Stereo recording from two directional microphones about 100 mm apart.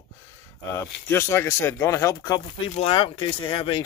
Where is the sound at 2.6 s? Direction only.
65° left (ahead or behind).